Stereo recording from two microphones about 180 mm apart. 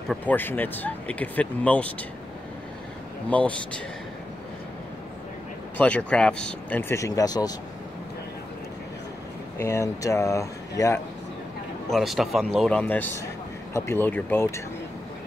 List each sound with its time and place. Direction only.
0.1 s speech: 10° left (ahead or behind)
3.3 s speech: 5° left (ahead or behind)
5.8 s speech: 5° left (ahead or behind)
9.6 s speech: 15° left (ahead or behind)
11.9 s a man's voice: centre (ahead or behind)